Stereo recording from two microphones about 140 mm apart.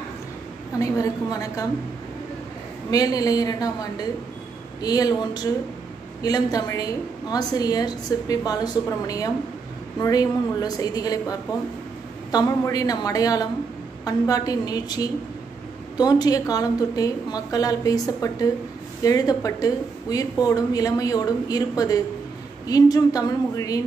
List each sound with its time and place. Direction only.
0.7 s a woman's voice: 25° left (ahead or behind)
2.9 s a woman's voice: 25° left (ahead or behind)